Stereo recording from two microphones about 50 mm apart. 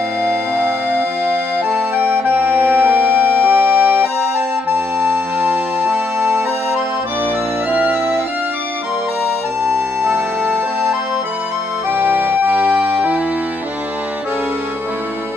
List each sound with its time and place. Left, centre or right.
0.7 s music: right
7.7 s music: right
9.7 s music: right
11.9 s accordion: right